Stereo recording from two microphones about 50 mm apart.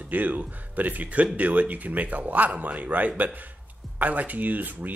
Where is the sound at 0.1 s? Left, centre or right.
Right.